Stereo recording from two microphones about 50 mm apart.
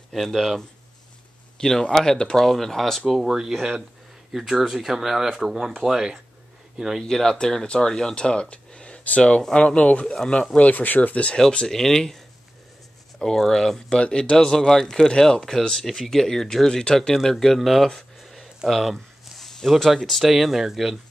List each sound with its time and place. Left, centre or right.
0.1 s speech: centre
3.3 s speech: centre
7.1 s speech: centre; by 11.3 s left
11.3 s speech: centre
13.2 s speech: centre
13.9 s speech: left; by 17.8 s centre
17.8 s a sound: centre
18.7 s speech: centre